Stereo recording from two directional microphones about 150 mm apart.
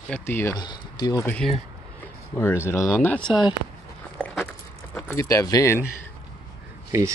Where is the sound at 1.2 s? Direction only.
5° left (ahead or behind).